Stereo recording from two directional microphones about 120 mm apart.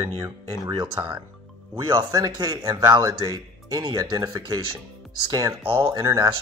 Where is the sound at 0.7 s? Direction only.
40° right (ahead or behind).